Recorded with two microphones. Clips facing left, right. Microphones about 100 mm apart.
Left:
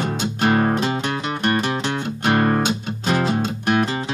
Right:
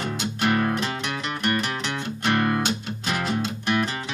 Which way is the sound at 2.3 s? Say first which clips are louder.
Left 4 dB; 35° left (ahead or behind).